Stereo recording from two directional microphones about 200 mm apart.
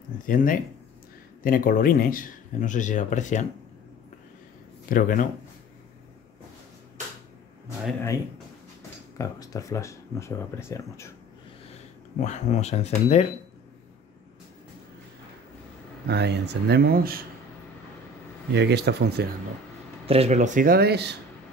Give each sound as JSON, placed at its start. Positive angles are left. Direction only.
{"t": 0.3, "sound": "speech", "side_deg": 45}
{"t": 4.8, "sound": "speech", "side_deg": 45}
{"t": 9.2, "sound": "speech", "side_deg": 15}
{"t": 12.2, "sound": "speech", "side_deg": 35}
{"t": 16.1, "sound": "speech", "side_deg": -55}
{"t": 18.5, "sound": "speech", "side_deg": -55}
{"t": 20.1, "sound": "speech", "side_deg": -30}